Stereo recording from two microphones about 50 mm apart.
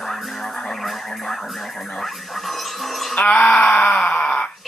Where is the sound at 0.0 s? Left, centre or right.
Centre.